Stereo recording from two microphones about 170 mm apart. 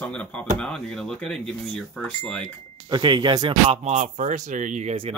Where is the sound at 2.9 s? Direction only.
30° right (ahead or behind).